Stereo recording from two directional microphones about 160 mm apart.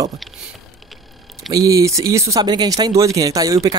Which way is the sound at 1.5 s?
20° right (ahead or behind).